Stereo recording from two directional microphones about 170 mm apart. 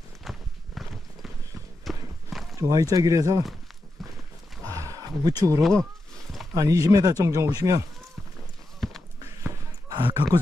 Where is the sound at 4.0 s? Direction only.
Centre (ahead or behind).